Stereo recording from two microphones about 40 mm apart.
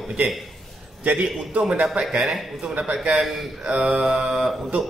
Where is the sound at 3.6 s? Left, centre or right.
Right.